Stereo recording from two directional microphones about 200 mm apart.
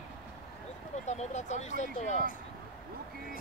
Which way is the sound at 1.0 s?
35° left (ahead or behind).